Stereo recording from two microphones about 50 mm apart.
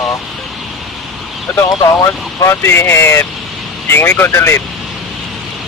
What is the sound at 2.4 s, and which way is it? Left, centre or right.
Speech, left.